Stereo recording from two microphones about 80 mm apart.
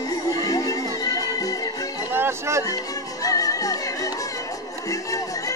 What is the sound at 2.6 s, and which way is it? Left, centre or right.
Music, left.